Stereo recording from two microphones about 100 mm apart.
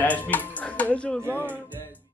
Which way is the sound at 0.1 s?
15° left (ahead or behind).